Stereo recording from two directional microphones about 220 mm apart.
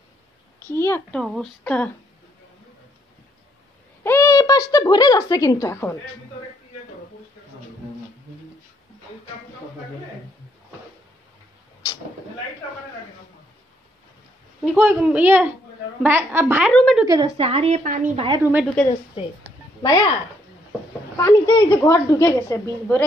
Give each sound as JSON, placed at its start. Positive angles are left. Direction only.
{"t": 0.7, "sound": "a woman's voice", "side_deg": 10}
{"t": 4.0, "sound": "speech", "side_deg": 10}
{"t": 14.6, "sound": "speech", "side_deg": -5}
{"t": 16.7, "sound": "speech", "side_deg": 0}
{"t": 17.0, "sound": "a woman's voice", "side_deg": -15}
{"t": 18.4, "sound": "speech", "side_deg": -10}
{"t": 19.8, "sound": "speech", "side_deg": 20}
{"t": 21.2, "sound": "a woman's voice", "side_deg": 15}